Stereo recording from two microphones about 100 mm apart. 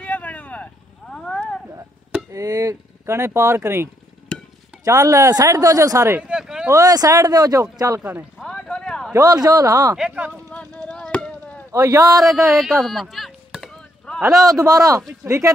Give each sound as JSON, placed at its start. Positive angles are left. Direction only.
{"t": 0.0, "sound": "vehicle", "side_deg": 15}
{"t": 2.3, "sound": "speech", "side_deg": -35}
{"t": 6.2, "sound": "speech", "side_deg": -5}
{"t": 6.7, "sound": "speech", "side_deg": -35}
{"t": 8.0, "sound": "speech", "side_deg": -15}
{"t": 8.4, "sound": "a sound", "side_deg": 5}
{"t": 9.1, "sound": "speech", "side_deg": -40}
{"t": 9.9, "sound": "speech", "side_deg": -10}
{"t": 10.3, "sound": "chop", "side_deg": 15}
{"t": 11.7, "sound": "speech", "side_deg": -35}
{"t": 12.2, "sound": "speech", "side_deg": 0}
{"t": 12.8, "sound": "chop", "side_deg": 0}
{"t": 14.5, "sound": "speech", "side_deg": -35}